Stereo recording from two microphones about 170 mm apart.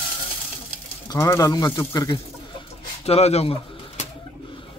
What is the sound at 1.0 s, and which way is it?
Speech, 20° left (ahead or behind).